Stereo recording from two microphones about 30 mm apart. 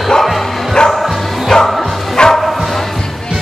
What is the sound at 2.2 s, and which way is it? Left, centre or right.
Bow-wow, left.